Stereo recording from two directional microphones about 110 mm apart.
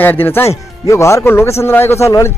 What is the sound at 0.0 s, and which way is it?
Speech, 20° left (ahead or behind).